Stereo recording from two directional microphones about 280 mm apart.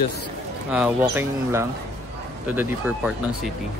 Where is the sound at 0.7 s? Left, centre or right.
Centre.